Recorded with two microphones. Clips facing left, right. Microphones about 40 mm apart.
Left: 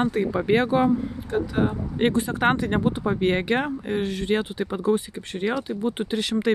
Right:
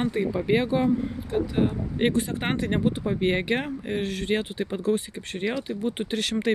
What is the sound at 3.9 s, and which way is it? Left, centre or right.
Speech, right.